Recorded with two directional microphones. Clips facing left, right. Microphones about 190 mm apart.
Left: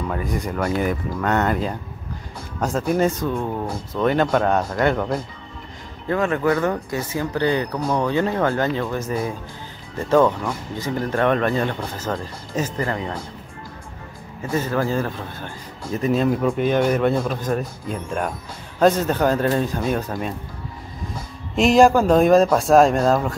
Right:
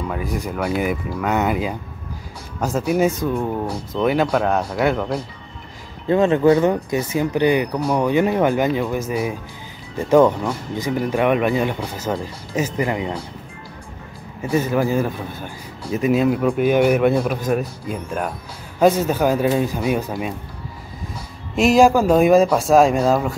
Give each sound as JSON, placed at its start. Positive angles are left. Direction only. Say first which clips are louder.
{"t": 0.1, "sound": "speech", "louder": "even", "side_deg": -5}
{"t": 2.9, "sound": "speech", "louder": "right 2 dB", "side_deg": -10}
{"t": 6.0, "sound": "speech", "louder": "right 6 dB", "side_deg": -20}
{"t": 14.5, "sound": "speech", "louder": "right 3 dB", "side_deg": -15}
{"t": 21.5, "sound": "speech", "louder": "even", "side_deg": -5}